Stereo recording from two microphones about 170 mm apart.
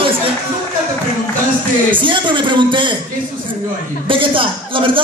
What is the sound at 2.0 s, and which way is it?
Speech, 30° right (ahead or behind).